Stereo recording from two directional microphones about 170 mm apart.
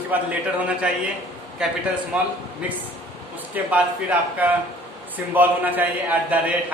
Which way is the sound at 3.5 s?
10° right (ahead or behind).